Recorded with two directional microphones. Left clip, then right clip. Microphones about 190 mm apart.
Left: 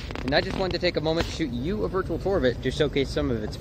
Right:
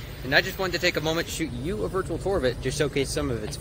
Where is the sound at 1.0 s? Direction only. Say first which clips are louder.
Left 1 dB; 20° left (ahead or behind).